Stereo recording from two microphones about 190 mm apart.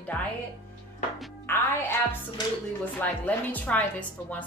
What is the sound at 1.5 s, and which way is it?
Music, 10° left (ahead or behind).